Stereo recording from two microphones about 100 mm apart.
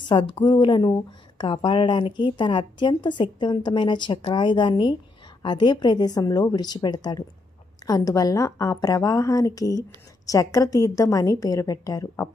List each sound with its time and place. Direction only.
0.0 s a woman's voice: 55° left (ahead or behind); by 12.3 s 35° left (ahead or behind)